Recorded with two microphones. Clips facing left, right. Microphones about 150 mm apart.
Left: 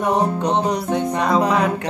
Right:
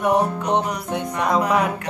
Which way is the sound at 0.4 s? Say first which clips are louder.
Left 2 dB; 30° left (ahead or behind).